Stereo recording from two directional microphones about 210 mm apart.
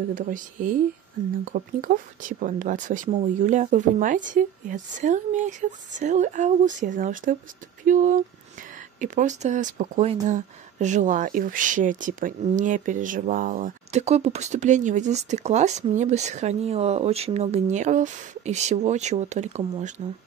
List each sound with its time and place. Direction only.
0.1 s speech: 40° right (ahead or behind)